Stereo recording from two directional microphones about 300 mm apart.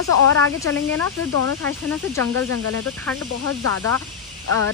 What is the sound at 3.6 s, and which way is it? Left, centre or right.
Speech, right.